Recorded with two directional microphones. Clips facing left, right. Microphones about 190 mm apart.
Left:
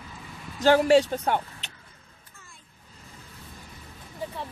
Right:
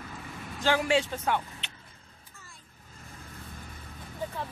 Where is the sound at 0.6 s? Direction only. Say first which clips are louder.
Left 8 dB; 40° left (ahead or behind).